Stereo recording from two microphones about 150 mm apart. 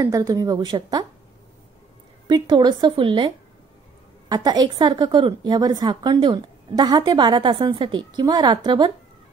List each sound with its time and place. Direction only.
0.0 s a woman's voice: 25° right (ahead or behind)
2.2 s a woman's voice: 30° right (ahead or behind)